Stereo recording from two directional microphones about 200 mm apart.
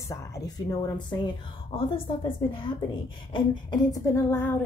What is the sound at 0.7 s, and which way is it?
A woman's voice, 20° left (ahead or behind).